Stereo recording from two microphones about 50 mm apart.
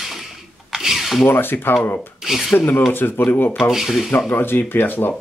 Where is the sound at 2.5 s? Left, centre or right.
Left.